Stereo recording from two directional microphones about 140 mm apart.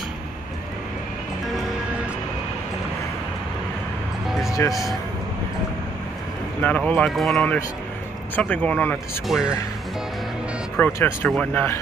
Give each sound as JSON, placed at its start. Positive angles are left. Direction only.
{"t": 4.5, "sound": "music", "side_deg": 25}
{"t": 6.9, "sound": "speech", "side_deg": 5}
{"t": 9.3, "sound": "speech", "side_deg": -5}
{"t": 10.8, "sound": "speech", "side_deg": 15}
{"t": 11.2, "sound": "speech", "side_deg": 5}